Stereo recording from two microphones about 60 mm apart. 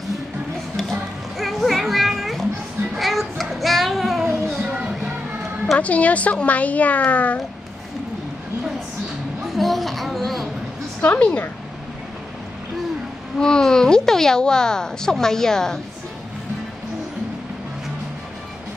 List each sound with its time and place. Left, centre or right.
1.4 s children playing: centre
3.0 s child singing: centre
4.6 s music: right
5.8 s a child's voice: left
9.5 s a sound: centre
11.0 s a child's voice: left
13.4 s speech: centre